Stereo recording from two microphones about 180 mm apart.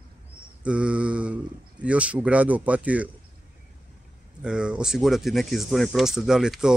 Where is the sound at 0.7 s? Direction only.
5° right (ahead or behind).